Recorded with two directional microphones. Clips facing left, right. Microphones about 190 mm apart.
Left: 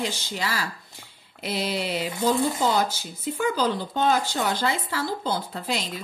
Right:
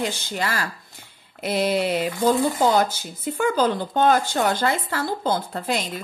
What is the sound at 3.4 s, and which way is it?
Speech, 50° right (ahead or behind).